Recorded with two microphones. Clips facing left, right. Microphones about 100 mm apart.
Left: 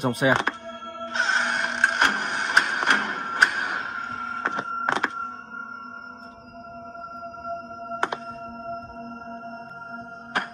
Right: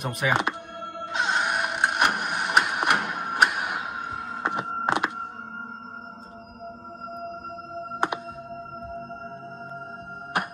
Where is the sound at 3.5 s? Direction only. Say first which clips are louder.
Left 1 dB; 10° right (ahead or behind).